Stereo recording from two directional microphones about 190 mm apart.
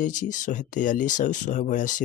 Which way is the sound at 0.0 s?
40° left (ahead or behind).